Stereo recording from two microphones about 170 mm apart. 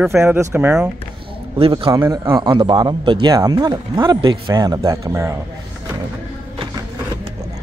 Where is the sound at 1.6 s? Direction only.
30° right (ahead or behind).